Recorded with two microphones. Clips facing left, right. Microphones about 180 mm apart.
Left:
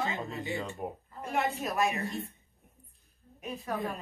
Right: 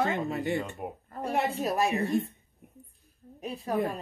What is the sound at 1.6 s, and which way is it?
Speech, 35° right (ahead or behind).